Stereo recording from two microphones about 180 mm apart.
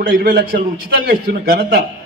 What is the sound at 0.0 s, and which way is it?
A man's voice, 60° right (ahead or behind).